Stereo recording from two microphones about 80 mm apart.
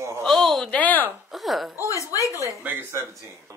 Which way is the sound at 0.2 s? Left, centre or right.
Centre.